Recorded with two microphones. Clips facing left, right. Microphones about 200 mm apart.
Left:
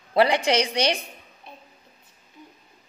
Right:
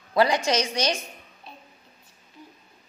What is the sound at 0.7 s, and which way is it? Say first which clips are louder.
Speech: left 2 dB; 60° left (ahead or behind).